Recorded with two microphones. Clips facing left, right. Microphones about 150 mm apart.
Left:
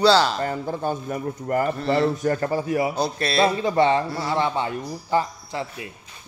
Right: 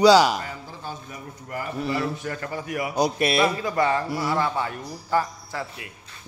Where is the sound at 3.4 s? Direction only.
25° left (ahead or behind).